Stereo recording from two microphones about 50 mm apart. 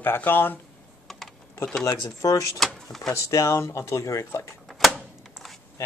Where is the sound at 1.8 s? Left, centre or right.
Left.